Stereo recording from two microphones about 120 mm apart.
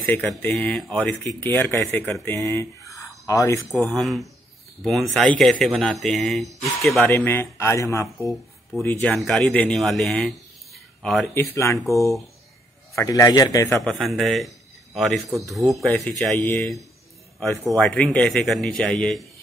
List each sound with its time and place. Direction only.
0.0 s speech: 15° left (ahead or behind)
1.4 s speech: 20° left (ahead or behind)
3.7 s speech: centre (ahead or behind)
7.1 s speech: 20° left (ahead or behind)
9.1 s speech: 5° left (ahead or behind)
11.3 s speech: 25° left (ahead or behind)
12.9 s speech: 30° left (ahead or behind)
13.8 s speech: centre (ahead or behind)
16.3 s speech: 20° left (ahead or behind)
17.7 s speech: 5° left (ahead or behind)